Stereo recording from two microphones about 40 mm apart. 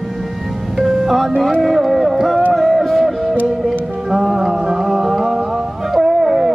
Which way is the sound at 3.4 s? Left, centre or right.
Centre.